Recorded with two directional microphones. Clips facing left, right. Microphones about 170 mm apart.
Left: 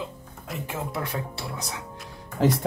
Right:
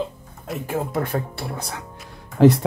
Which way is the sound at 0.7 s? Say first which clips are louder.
Right 8 dB; 50° right (ahead or behind).